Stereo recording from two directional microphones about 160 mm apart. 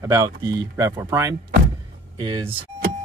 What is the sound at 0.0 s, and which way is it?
Speech, 20° right (ahead or behind).